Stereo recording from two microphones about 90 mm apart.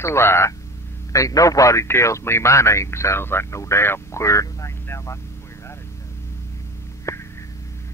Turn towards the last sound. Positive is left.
turn(degrees=30)  # may be behind; listen again after turning